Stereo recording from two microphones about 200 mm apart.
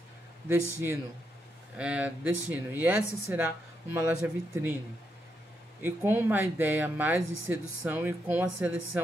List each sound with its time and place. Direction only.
0.5 s speech: 10° right (ahead or behind)
3.0 s speech: 55° left (ahead or behind)
3.3 s a woman's voice: 10° right (ahead or behind)
5.8 s speech: 10° right (ahead or behind)